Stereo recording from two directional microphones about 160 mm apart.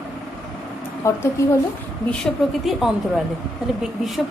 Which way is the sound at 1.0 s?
15° left (ahead or behind).